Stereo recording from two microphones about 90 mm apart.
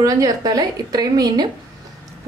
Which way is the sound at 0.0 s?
40° right (ahead or behind).